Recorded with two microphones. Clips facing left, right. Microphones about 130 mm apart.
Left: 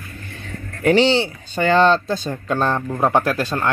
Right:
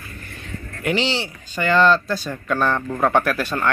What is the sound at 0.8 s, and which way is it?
A man's voice, 35° left (ahead or behind).